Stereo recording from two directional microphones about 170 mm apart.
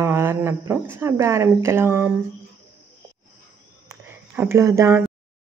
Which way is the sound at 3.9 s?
15° right (ahead or behind).